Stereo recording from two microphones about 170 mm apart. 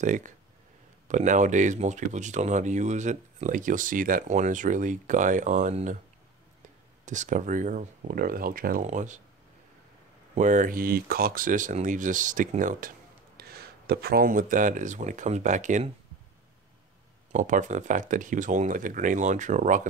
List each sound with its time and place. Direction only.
0.0 s speech: 45° right (ahead or behind)
7.1 s speech: 45° right (ahead or behind)
8.8 s speech: 45° right (ahead or behind)
10.3 s speech: 45° right (ahead or behind)
13.4 s speech: 65° right (ahead or behind); by 15.9 s 45° right (ahead or behind)
17.3 s speech: 45° right (ahead or behind)